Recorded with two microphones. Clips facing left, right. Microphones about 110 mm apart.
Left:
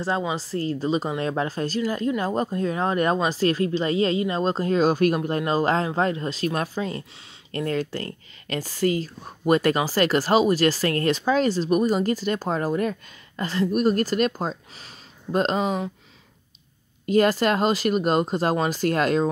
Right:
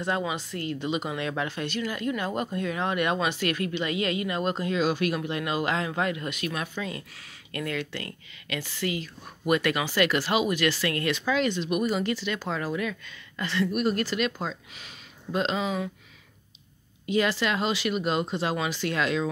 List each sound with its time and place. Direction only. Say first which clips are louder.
0.0 s speech: left 3 dB; 30° left (ahead or behind)
17.0 s speech: left 6 dB; 45° left (ahead or behind)